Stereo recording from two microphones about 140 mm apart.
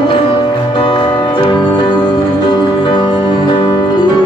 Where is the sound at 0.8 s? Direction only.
35° left (ahead or behind).